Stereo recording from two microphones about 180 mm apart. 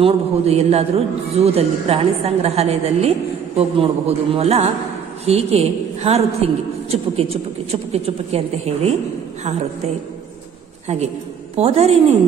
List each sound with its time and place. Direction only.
0.0 s a man's voice: 35° right (ahead or behind)
11.5 s a man's voice: 35° right (ahead or behind)